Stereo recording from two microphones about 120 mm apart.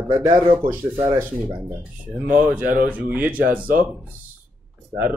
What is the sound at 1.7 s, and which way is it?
Speech, 15° right (ahead or behind).